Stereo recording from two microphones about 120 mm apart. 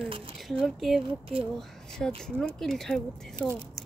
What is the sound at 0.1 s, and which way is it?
Cutlery, 50° right (ahead or behind).